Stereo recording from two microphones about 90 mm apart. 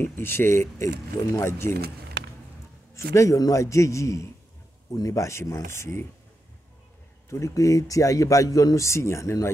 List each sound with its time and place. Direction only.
0.0 s speech: 25° left (ahead or behind)
2.9 s speech: 35° left (ahead or behind)
7.2 s speech: 35° left (ahead or behind)